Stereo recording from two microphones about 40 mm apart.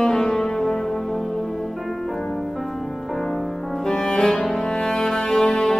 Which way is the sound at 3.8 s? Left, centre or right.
Left.